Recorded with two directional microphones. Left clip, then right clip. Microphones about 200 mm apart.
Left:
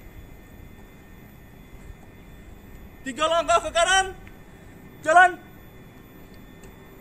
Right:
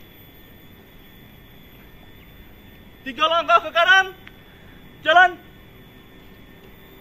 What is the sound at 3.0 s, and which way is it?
A man's voice, 30° left (ahead or behind).